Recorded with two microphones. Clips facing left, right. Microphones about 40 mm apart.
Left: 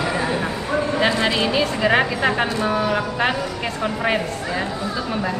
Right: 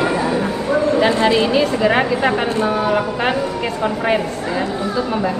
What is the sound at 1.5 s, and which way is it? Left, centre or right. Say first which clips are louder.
Speech: right 3 dB; centre.